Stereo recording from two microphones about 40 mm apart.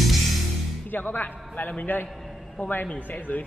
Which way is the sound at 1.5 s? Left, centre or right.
Left.